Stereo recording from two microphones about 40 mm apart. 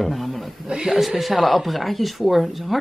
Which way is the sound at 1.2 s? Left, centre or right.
Centre.